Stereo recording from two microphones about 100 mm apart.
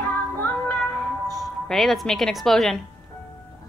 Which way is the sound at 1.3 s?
Centre (ahead or behind).